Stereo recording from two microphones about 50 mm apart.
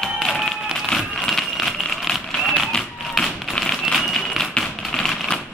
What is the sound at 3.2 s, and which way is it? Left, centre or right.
Tap, centre.